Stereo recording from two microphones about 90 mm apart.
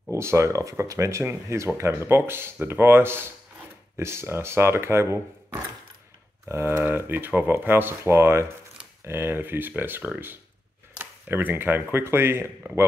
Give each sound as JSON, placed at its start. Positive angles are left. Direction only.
{"t": 0.1, "sound": "speech", "side_deg": -30}
{"t": 6.5, "sound": "speech", "side_deg": -30}